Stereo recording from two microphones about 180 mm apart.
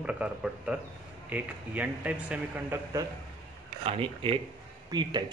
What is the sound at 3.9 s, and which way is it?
Speech, 30° right (ahead or behind).